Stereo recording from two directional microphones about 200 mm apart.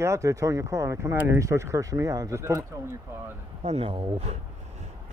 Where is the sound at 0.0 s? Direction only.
15° right (ahead or behind).